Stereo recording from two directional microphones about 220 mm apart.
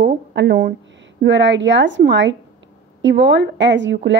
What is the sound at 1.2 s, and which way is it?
A woman's voice, 55° right (ahead or behind).